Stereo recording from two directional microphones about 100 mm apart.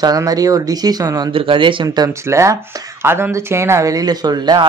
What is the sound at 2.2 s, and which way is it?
Speech, 30° right (ahead or behind).